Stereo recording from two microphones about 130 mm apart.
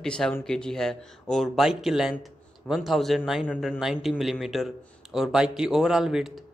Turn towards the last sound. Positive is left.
turn(degrees=0)  # may be behind; listen again after turning